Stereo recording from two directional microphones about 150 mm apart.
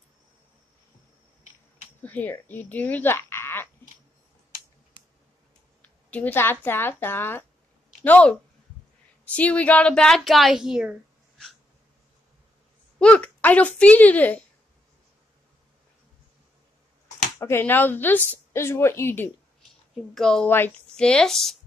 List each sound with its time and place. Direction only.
2.0 s speech: 10° left (ahead or behind)
5.8 s a woman's voice: 10° left (ahead or behind)
13.0 s a woman's voice: 10° left (ahead or behind)
17.4 s a woman's voice: 15° left (ahead or behind)
20.2 s a woman's voice: 5° left (ahead or behind)